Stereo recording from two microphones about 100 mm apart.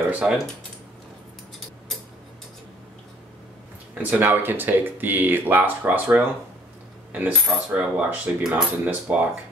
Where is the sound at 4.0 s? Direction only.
20° right (ahead or behind).